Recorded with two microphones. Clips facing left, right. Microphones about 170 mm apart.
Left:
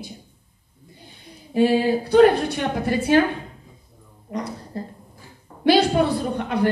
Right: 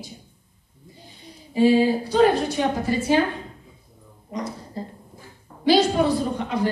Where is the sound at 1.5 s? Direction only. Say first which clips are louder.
Right 1 dB; 60° left (ahead or behind).